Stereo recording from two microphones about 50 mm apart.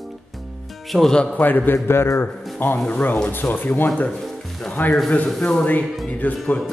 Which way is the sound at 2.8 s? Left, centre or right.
Left.